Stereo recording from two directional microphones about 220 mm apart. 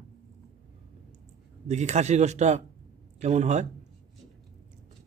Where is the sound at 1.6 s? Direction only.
30° right (ahead or behind).